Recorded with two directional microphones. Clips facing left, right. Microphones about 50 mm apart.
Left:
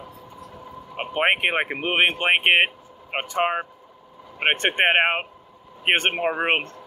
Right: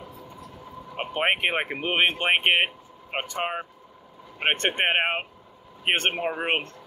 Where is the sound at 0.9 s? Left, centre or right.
Centre.